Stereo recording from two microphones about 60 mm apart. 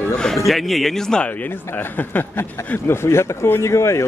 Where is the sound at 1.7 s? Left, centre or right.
Left.